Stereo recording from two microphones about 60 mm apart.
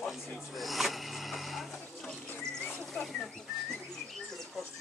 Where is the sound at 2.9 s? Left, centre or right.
Centre.